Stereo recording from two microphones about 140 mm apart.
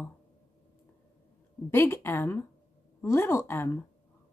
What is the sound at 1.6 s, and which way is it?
Speech, 15° left (ahead or behind).